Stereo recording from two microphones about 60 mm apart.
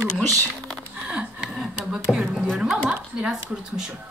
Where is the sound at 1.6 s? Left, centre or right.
Centre.